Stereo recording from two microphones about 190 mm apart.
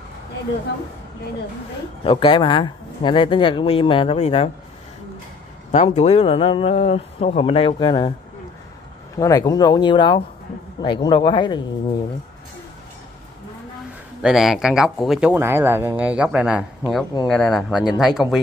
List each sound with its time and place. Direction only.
2.0 s speech: 25° left (ahead or behind)
5.7 s speech: 35° left (ahead or behind)
9.1 s speech: 15° left (ahead or behind)
14.2 s speech: centre (ahead or behind)